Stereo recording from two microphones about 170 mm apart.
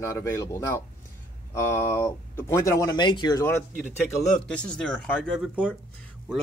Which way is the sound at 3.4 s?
15° left (ahead or behind).